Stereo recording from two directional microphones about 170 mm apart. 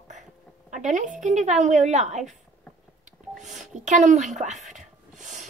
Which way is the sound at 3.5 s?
45° right (ahead or behind).